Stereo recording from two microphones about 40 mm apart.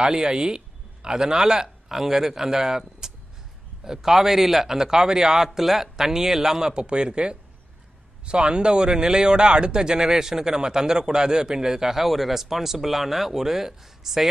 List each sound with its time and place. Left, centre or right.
0.0 s a man's voice: centre
3.0 s a sound: centre
3.8 s a man's voice: centre
6.7 s a man's voice: right